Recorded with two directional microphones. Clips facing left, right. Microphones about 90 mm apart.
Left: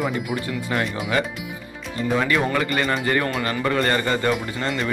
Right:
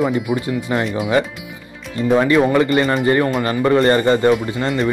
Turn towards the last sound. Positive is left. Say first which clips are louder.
# right 7 dB
turn(degrees=-25)  # may be behind; listen again after turning